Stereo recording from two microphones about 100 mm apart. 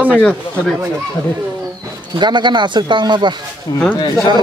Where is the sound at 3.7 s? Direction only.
45° left (ahead or behind).